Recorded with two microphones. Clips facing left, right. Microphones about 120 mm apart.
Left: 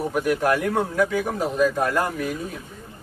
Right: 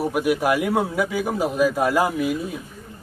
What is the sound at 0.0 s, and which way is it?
A man's voice, 10° right (ahead or behind).